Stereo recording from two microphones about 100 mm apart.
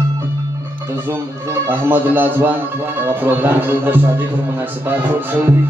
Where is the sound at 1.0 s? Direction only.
20° right (ahead or behind).